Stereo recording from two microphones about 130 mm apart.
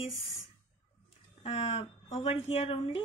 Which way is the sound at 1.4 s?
50° left (ahead or behind).